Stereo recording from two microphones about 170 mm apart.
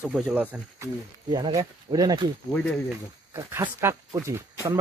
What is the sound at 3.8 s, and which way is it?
Speech, 15° right (ahead or behind).